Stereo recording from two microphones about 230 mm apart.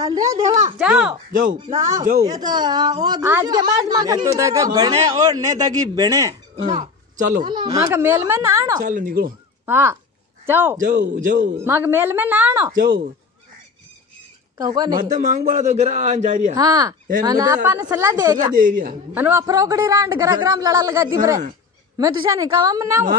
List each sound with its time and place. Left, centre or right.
0.7 s speech: centre
1.8 s a woman's voice: centre
6.6 s speech: right
7.4 s a woman's voice: centre
8.8 s a man's voice: right
9.7 s a woman's voice: centre
10.8 s a man's voice: right
11.6 s a woman's voice: centre
12.7 s a man's voice: right
14.6 s a woman's voice: centre
15.0 s a man's voice: right
16.5 s a woman's voice: centre
18.6 s a man's voice: right
19.1 s a woman's voice: centre